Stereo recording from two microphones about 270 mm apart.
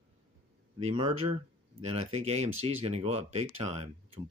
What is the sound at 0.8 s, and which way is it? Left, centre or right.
Speech, right.